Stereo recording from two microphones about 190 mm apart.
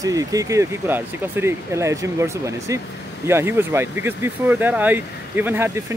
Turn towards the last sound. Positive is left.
turn(degrees=-10)  # may be behind; listen again after turning